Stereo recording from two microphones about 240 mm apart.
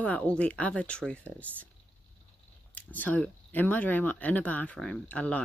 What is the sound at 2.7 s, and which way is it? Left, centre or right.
Speech, centre.